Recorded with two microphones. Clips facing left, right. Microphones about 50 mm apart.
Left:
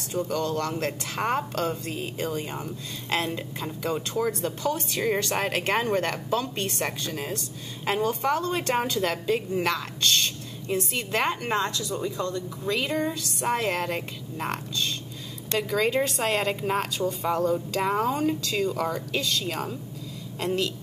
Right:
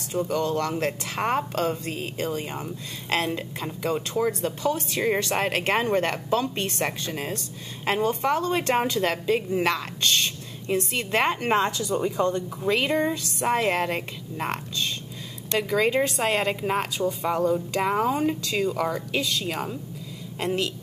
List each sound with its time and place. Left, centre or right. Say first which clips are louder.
0.1 s a woman's voice: right 2 dB; centre
11.9 s speech: right 5 dB; right
12.6 s a woman's voice: right 4 dB; centre
13.2 s a woman's voice: right 3 dB; centre